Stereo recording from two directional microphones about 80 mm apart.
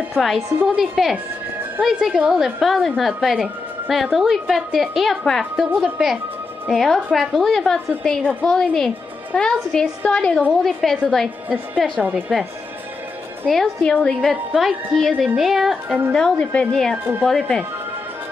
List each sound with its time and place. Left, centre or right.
0.1 s a woman's voice: centre
11.4 s a woman's voice: right
13.5 s a woman's voice: centre